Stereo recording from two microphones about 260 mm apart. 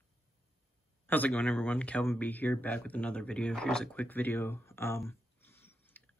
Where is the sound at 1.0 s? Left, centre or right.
Centre.